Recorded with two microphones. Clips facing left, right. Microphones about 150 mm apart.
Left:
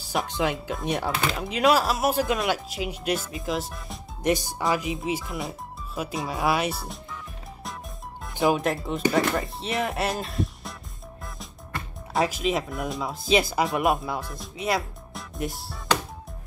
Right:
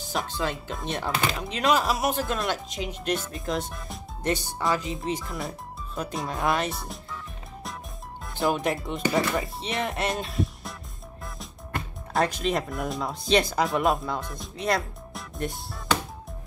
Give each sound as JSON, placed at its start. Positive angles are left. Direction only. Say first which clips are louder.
{"t": 0.3, "sound": "speech", "louder": "left 5 dB", "side_deg": 20}
{"t": 0.7, "sound": "speech", "louder": "left 3 dB", "side_deg": 5}
{"t": 4.2, "sound": "speech", "louder": "left 3 dB", "side_deg": 15}
{"t": 8.5, "sound": "speech", "louder": "left 2 dB", "side_deg": 0}
{"t": 12.1, "sound": "speech", "louder": "left 1 dB", "side_deg": 0}